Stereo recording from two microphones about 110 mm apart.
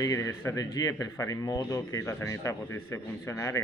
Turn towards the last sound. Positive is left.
turn(degrees=25)  # may be behind; listen again after turning